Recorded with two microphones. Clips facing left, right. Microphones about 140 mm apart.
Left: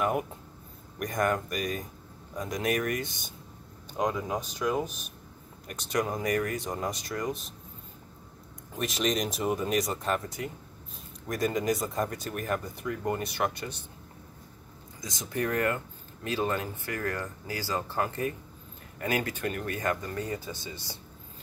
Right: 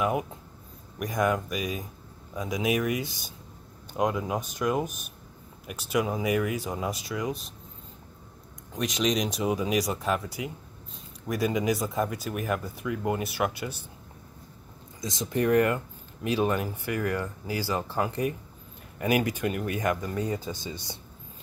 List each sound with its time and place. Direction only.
0.0 s speech: centre (ahead or behind)
8.7 s speech: centre (ahead or behind)
15.0 s speech: 25° right (ahead or behind)